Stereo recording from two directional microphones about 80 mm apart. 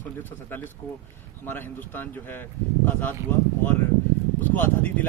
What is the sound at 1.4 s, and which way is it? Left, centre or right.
A man's voice, left.